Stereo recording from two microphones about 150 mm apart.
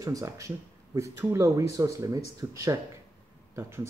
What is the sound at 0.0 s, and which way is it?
Speech, 20° right (ahead or behind).